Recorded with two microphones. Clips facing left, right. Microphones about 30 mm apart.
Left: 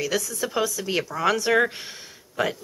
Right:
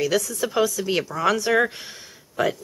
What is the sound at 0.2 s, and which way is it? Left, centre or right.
Speech, centre.